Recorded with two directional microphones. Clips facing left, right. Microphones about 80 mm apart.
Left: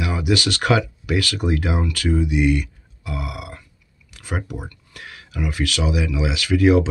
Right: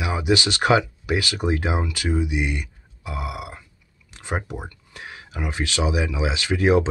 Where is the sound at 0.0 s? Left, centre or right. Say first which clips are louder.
Even; right.